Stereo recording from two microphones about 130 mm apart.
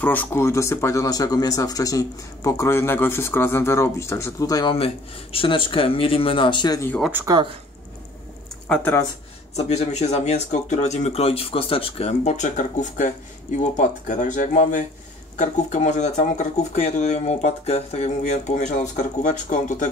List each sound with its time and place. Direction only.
0.0 s speech: 15° left (ahead or behind)
4.6 s speech: 45° left (ahead or behind)
7.2 s speech: 15° right (ahead or behind)
8.6 s speech: 10° left (ahead or behind)
9.6 s speech: 55° left (ahead or behind); by 19.9 s 75° left (ahead or behind)